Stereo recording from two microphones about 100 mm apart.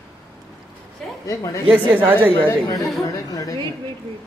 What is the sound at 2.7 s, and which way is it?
Speech, centre (ahead or behind).